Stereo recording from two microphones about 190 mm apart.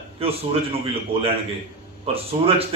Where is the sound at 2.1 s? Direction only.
30° right (ahead or behind).